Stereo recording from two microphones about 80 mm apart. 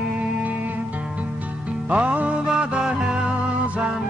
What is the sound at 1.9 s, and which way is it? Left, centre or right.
Music, centre.